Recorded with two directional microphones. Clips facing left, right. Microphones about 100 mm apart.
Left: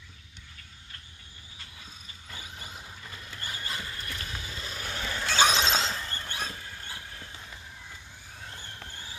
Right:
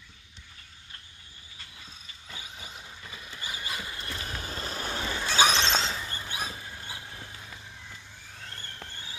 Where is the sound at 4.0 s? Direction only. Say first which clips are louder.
Right 2 dB; 25° right (ahead or behind).